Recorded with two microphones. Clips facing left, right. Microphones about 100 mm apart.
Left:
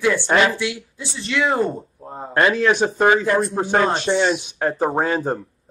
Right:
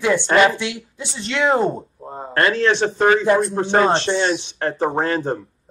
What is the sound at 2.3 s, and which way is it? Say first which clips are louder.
A man's voice: left 1 dB; 15° left (ahead or behind).